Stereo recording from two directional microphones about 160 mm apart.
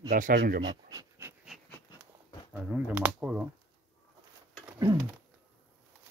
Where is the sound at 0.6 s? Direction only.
25° right (ahead or behind).